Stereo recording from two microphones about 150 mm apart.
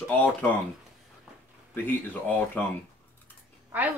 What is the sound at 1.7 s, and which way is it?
Speech, 15° left (ahead or behind).